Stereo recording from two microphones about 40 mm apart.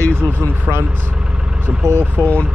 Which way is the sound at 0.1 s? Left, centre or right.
Right.